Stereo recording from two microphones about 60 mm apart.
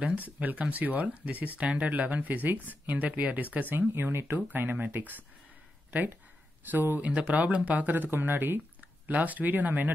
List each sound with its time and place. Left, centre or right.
0.2 s speech: right
3.9 s speech: right
7.0 s speech: right